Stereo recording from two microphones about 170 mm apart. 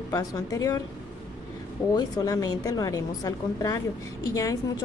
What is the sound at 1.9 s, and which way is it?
A woman's voice, 20° left (ahead or behind).